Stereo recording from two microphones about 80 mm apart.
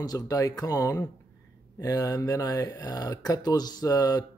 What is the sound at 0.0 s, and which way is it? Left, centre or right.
Speech, left.